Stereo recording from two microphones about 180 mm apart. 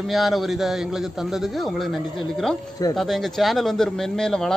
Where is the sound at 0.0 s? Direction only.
Centre (ahead or behind).